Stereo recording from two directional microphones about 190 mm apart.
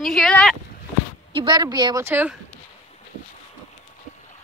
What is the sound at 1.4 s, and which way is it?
Speech, 20° right (ahead or behind).